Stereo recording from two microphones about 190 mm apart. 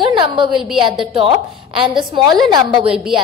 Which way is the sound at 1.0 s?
30° right (ahead or behind).